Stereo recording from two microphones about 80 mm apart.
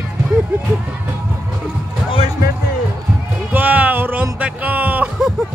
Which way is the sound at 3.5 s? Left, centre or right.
Right.